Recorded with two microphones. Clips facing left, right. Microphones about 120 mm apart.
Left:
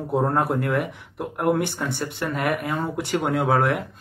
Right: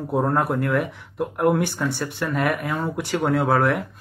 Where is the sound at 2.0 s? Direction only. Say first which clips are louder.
Right 1 dB; 20° left (ahead or behind).